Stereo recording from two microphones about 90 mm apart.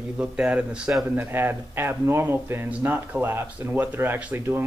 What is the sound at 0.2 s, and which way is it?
Speech, 10° right (ahead or behind).